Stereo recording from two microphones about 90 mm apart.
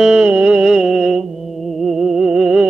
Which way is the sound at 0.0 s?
10° right (ahead or behind).